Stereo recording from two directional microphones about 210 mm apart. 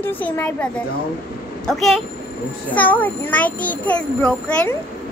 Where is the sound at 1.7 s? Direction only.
Centre (ahead or behind).